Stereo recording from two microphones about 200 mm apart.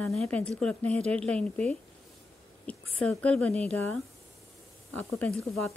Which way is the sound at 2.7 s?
5° left (ahead or behind).